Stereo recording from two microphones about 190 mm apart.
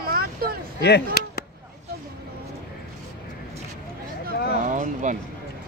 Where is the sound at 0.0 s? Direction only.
50° right (ahead or behind).